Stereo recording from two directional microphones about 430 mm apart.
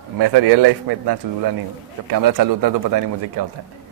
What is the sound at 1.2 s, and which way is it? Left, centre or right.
Speech, right.